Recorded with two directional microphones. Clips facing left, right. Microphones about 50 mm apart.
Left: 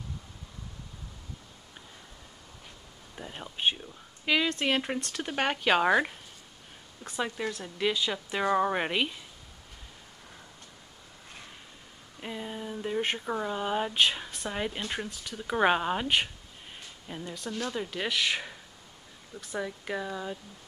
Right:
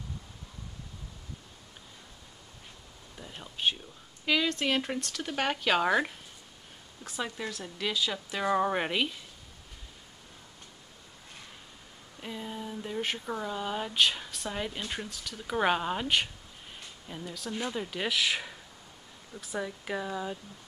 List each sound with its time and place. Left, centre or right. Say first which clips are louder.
3.2 s speech: left 2 dB; centre
7.2 s speech: left 3 dB; centre
12.2 s speech: left 1 dB; centre
17.5 s speech: even; centre
17.7 s speech: even; centre